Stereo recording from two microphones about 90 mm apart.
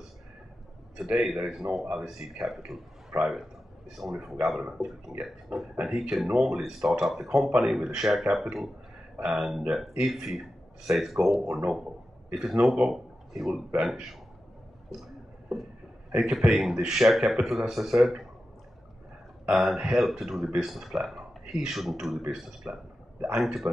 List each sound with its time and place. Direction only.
0.9 s a man's voice: centre (ahead or behind)
16.1 s speech: 5° right (ahead or behind)
19.5 s a man's voice: centre (ahead or behind)